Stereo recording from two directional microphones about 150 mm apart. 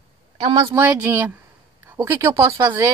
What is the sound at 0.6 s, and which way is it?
Speech, 15° right (ahead or behind).